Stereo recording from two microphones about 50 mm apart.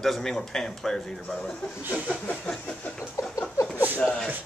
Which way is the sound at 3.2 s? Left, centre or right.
Left.